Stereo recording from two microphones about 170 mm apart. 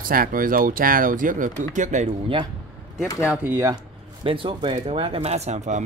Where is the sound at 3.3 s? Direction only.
10° right (ahead or behind).